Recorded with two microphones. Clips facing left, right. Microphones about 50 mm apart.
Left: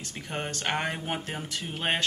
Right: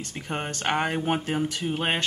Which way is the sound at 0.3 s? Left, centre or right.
Centre.